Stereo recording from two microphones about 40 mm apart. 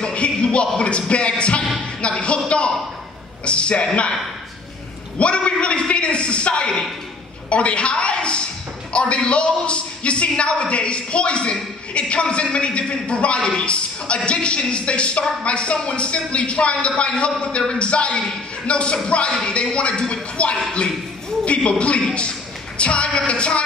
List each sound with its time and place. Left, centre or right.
0.0 s a man's voice: left
5.2 s a man's voice: left